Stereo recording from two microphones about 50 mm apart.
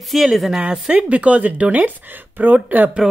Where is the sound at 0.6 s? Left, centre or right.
Right.